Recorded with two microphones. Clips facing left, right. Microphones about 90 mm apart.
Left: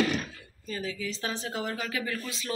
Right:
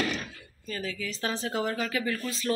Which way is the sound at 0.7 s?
15° left (ahead or behind).